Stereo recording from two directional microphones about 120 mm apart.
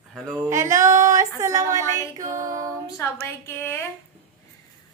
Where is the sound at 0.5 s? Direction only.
25° right (ahead or behind).